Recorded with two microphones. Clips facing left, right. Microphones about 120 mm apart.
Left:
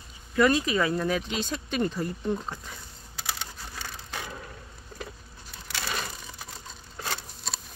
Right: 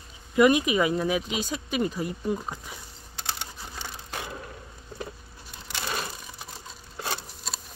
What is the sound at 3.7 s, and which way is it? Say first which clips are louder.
Wood: right 1 dB; 10° right (ahead or behind).